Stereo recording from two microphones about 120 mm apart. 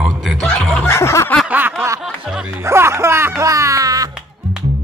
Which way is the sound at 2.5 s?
20° right (ahead or behind).